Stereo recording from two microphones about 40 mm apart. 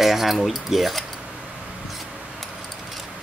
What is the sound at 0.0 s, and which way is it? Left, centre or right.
Speech, centre.